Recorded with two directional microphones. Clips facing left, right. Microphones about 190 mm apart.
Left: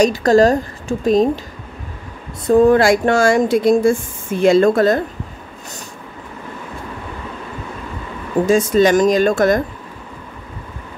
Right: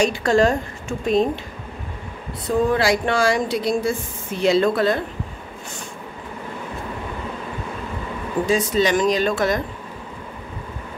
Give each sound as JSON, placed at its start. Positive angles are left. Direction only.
{"t": 0.0, "sound": "a woman's voice", "side_deg": 40}
{"t": 2.4, "sound": "speech", "side_deg": 50}
{"t": 8.5, "sound": "speech", "side_deg": 45}